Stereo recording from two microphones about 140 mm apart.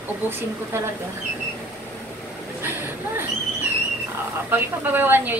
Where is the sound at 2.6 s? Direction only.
15° right (ahead or behind).